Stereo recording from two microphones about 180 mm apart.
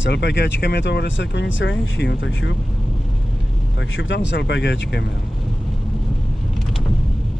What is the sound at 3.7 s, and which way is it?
Speech, 90° left.